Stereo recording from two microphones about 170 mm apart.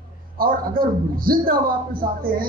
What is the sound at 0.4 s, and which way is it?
A man's voice, 55° right (ahead or behind).